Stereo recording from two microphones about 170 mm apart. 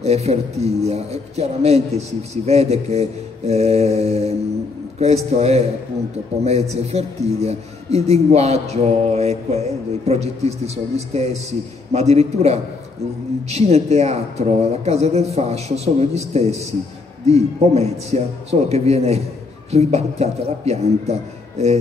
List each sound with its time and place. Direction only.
0.0 s a man's voice: 40° right (ahead or behind)